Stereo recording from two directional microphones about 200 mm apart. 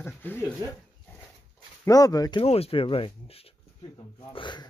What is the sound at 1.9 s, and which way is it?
Speech, 20° left (ahead or behind).